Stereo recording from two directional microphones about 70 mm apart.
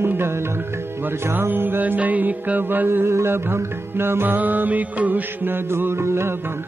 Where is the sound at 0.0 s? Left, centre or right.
Right.